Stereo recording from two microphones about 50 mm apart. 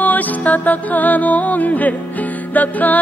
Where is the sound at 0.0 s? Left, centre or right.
Left.